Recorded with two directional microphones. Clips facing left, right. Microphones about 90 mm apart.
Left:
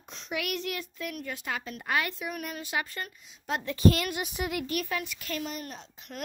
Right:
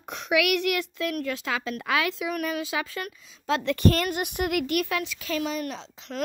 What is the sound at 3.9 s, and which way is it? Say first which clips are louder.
A child's voice: right 1 dB; 50° right (ahead or behind).